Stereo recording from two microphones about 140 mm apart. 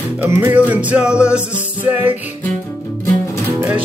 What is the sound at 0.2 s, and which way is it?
Music, 15° right (ahead or behind).